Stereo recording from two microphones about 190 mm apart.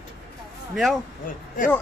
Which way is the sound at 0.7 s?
Centre (ahead or behind).